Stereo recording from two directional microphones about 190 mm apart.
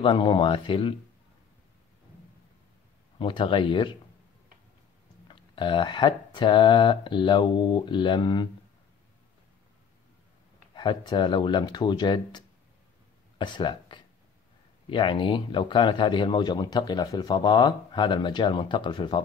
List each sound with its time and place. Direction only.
0.0 s speech: 25° left (ahead or behind)
3.2 s speech: 25° left (ahead or behind)
5.3 s speech: 25° left (ahead or behind)
10.7 s speech: 25° left (ahead or behind)
13.4 s a sound: 25° left (ahead or behind)
14.9 s speech: 25° left (ahead or behind)